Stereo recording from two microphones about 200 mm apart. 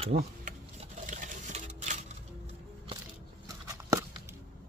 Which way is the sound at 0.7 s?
35° right (ahead or behind).